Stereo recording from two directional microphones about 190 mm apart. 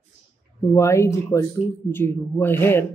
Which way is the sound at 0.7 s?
15° left (ahead or behind).